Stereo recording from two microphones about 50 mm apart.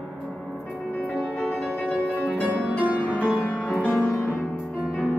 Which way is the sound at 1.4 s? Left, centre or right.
Left.